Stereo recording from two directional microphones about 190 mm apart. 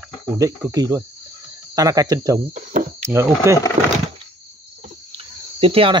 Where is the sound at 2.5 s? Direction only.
40° right (ahead or behind).